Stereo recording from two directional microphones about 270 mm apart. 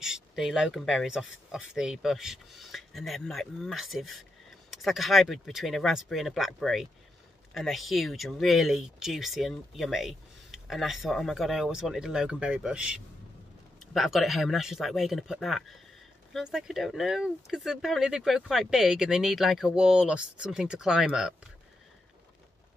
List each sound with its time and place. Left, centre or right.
0.0 s speech: centre